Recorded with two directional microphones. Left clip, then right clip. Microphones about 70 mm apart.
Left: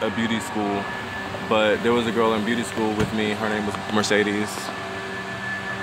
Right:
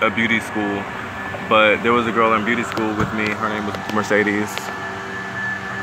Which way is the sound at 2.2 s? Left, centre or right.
Left.